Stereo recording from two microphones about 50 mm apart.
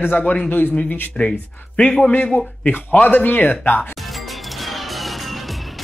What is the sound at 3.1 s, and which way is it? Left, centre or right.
Speech, left.